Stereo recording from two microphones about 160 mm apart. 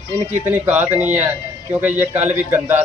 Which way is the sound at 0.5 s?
10° right (ahead or behind).